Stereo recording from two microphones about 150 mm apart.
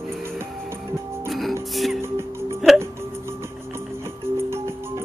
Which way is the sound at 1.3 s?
Centre (ahead or behind).